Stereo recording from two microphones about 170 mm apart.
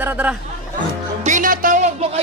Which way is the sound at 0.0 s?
10° right (ahead or behind).